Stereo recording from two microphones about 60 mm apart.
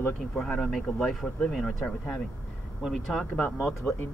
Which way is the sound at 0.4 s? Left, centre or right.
Centre.